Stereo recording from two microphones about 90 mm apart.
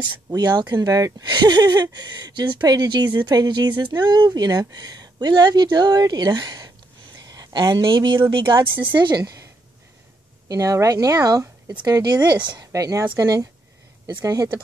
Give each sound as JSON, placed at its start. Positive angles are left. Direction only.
{"t": 0.0, "sound": "a woman's voice", "side_deg": -50}
{"t": 10.5, "sound": "speech", "side_deg": -40}
{"t": 12.7, "sound": "speech", "side_deg": -40}